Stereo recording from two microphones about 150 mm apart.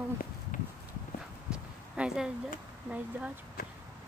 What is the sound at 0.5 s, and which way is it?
Walk, 60° left (ahead or behind).